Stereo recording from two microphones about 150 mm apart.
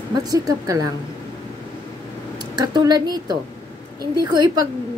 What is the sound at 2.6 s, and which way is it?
Speech, 30° right (ahead or behind).